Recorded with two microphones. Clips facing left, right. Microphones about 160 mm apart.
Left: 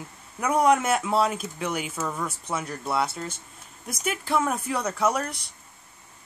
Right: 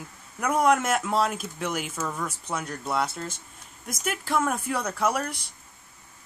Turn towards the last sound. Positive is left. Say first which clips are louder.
# left 1 dB
turn(degrees=-5)  # may be behind; listen again after turning